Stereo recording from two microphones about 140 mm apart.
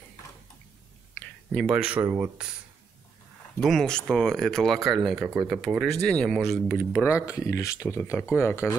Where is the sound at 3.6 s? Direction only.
5° left (ahead or behind).